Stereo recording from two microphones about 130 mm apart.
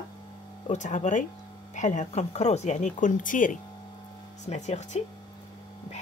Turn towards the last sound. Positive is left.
turn(degrees=60)  # may be behind; listen again after turning